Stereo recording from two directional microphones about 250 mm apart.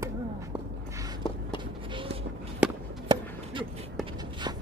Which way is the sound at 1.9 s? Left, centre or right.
Centre.